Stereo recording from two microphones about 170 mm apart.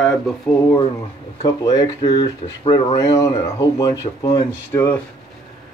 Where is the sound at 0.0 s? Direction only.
Centre (ahead or behind).